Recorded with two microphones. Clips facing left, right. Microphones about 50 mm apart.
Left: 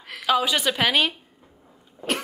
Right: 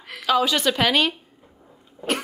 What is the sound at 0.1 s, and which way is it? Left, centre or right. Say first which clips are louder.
A woman's voice: right 1 dB; centre.